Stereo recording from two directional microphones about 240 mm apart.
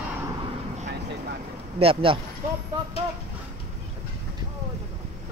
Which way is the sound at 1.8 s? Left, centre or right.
Right.